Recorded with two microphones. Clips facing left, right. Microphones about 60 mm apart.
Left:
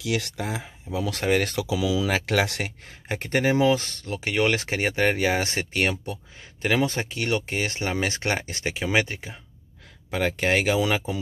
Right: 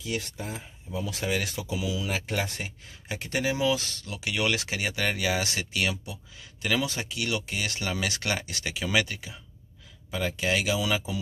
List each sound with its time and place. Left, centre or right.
0.0 s speech: left
2.1 s speech: left
2.9 s speech: left
10.1 s speech: left